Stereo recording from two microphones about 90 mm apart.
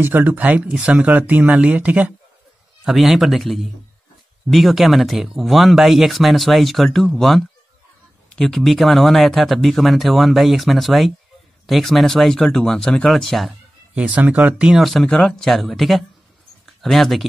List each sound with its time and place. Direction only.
0.0 s speech: 20° right (ahead or behind)
2.8 s speech: centre (ahead or behind)
13.9 s speech: 15° right (ahead or behind); by 17.3 s centre (ahead or behind)